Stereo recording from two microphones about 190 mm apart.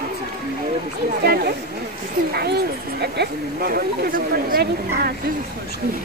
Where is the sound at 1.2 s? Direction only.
55° right (ahead or behind).